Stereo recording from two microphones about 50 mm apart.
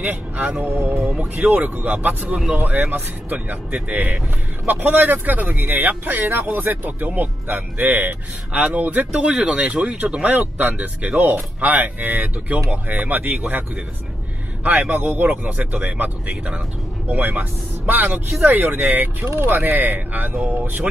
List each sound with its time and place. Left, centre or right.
0.1 s speech: right
0.7 s music: right
1.5 s speech: right
10.6 s speech: right
14.6 s speech: right